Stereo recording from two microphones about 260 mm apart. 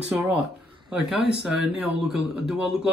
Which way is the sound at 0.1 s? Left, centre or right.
Centre.